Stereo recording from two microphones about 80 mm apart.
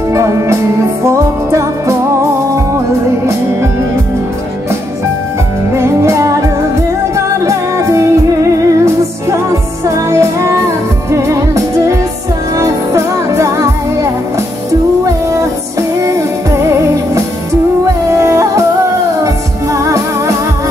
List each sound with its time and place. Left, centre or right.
0.1 s music: right
5.8 s music: right
16.0 s music: right